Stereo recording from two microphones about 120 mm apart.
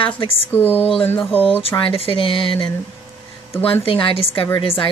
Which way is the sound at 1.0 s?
20° left (ahead or behind).